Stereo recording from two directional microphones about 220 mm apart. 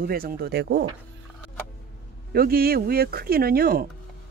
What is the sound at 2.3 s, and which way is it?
Speech, 45° right (ahead or behind).